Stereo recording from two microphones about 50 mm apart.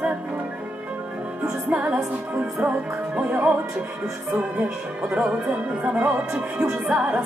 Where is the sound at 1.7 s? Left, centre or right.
Right.